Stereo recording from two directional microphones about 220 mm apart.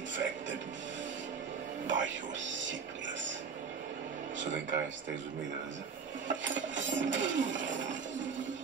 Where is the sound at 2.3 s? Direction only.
55° right (ahead or behind).